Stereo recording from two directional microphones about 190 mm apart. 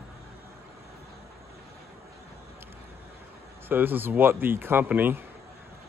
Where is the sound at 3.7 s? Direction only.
10° right (ahead or behind).